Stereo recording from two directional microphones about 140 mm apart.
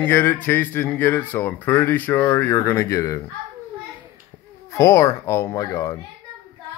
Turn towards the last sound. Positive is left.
turn(degrees=20)  # may be behind; listen again after turning